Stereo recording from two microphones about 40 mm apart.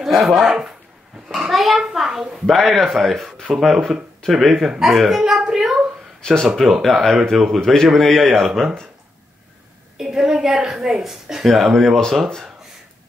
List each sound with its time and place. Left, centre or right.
0.0 s a man's voice: centre
2.4 s a man's voice: centre
6.8 s a man's voice: centre
7.3 s a woman's voice: centre
7.6 s a man's voice: centre
9.9 s a woman's voice: centre
11.4 s a man's voice: centre